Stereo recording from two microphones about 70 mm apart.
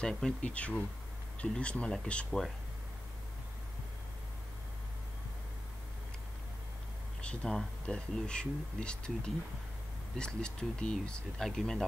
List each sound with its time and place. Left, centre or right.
0.0 s speech: centre
7.2 s speech: centre